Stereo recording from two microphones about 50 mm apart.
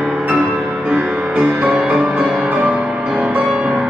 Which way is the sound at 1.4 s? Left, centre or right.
Right.